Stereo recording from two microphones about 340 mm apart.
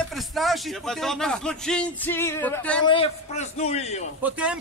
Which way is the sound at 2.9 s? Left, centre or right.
Centre.